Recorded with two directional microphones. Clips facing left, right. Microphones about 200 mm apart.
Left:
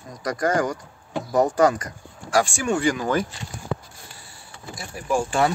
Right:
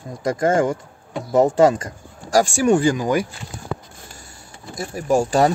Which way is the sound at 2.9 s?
15° right (ahead or behind).